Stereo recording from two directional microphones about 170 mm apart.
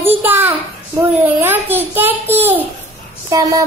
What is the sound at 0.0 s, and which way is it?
A child's voice, 10° right (ahead or behind).